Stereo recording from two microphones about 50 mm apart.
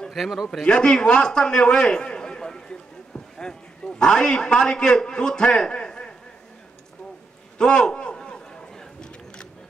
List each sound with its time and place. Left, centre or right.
0.1 s a man's voice: centre
0.5 s a man's voice: centre
7.5 s a sound: centre